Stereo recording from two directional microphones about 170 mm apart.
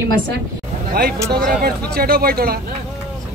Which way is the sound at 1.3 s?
60° right (ahead or behind).